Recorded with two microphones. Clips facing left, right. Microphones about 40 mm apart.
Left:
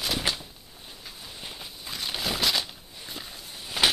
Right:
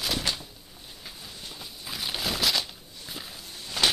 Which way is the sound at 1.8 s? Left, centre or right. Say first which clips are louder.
Even; centre.